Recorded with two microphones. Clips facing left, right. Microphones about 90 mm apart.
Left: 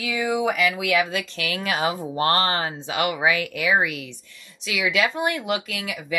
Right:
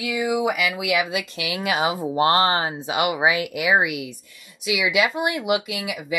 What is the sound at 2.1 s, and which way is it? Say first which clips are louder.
Speech: right 4 dB; 20° right (ahead or behind).